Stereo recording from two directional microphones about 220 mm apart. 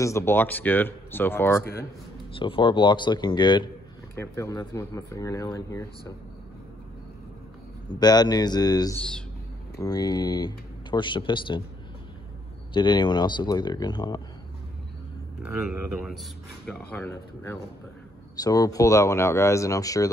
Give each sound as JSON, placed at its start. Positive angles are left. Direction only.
{"t": 0.0, "sound": "speech", "side_deg": 10}
{"t": 2.3, "sound": "a man's voice", "side_deg": 25}
{"t": 8.0, "sound": "a man's voice", "side_deg": 20}
{"t": 12.7, "sound": "a man's voice", "side_deg": 20}
{"t": 15.6, "sound": "speech", "side_deg": -5}
{"t": 16.6, "sound": "speech", "side_deg": 10}